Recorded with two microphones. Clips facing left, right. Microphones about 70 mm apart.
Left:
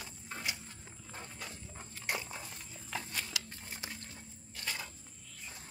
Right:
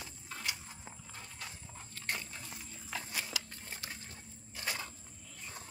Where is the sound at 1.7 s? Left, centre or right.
Centre.